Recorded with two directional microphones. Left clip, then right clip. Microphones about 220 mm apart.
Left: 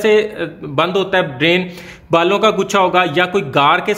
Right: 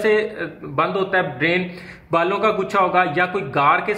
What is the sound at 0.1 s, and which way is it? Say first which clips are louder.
Speech: left 5 dB; 45° left (ahead or behind).